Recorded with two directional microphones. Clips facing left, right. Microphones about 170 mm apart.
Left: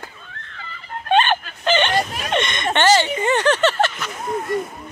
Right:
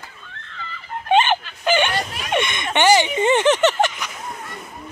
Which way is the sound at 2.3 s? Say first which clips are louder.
Right 2 dB; 10° right (ahead or behind).